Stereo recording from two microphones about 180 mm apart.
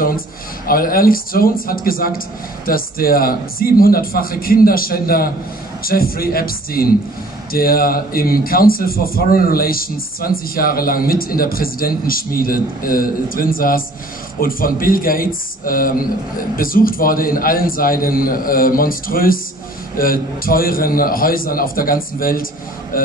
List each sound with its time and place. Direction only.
0.7 s a man's voice: 55° left (ahead or behind)